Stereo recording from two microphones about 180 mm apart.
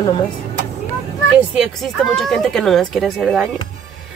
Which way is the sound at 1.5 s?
Centre (ahead or behind).